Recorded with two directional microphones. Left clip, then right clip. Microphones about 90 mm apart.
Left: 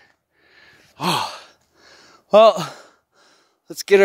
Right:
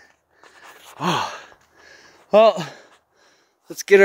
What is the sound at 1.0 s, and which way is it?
Sigh, 20° left (ahead or behind).